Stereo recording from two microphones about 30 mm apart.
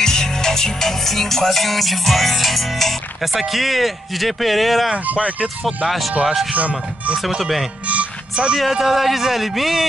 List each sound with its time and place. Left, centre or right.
0.0 s music: centre
3.2 s a man's voice: centre
4.9 s speech: right
5.9 s a man's voice: centre
6.5 s speech: right
7.8 s music: right
8.8 s a man's voice: centre